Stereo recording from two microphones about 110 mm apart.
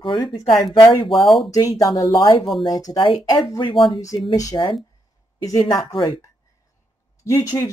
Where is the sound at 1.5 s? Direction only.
30° left (ahead or behind).